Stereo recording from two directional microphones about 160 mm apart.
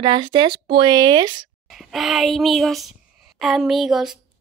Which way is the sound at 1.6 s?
Centre (ahead or behind).